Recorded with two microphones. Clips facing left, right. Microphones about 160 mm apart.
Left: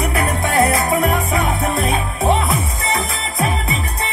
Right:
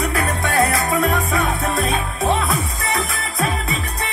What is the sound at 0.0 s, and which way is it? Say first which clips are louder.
Music: left 2 dB; 25° left (ahead or behind).